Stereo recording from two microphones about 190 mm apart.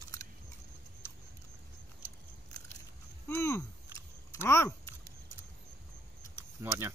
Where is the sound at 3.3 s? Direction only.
15° left (ahead or behind).